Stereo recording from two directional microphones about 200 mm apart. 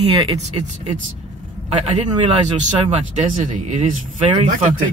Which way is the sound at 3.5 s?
35° right (ahead or behind).